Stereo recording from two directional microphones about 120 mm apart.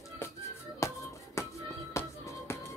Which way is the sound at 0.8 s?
25° left (ahead or behind).